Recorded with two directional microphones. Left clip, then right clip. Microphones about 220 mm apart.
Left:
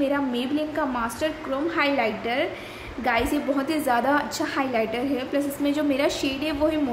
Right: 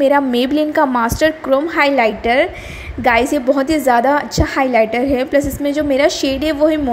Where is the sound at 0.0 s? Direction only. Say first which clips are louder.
Right 12 dB; 35° right (ahead or behind).